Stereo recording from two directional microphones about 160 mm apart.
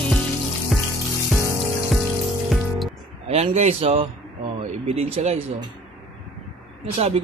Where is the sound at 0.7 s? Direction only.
Centre (ahead or behind).